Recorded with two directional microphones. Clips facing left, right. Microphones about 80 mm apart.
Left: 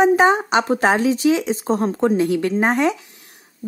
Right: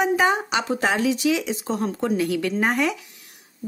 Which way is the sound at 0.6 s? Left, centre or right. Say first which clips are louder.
Left 5 dB; left.